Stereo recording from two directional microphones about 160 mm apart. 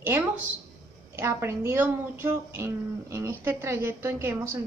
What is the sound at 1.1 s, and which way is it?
A woman's voice, 15° right (ahead or behind).